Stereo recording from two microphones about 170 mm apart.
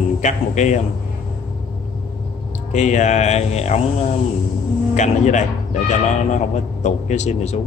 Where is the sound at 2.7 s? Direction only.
45° left (ahead or behind).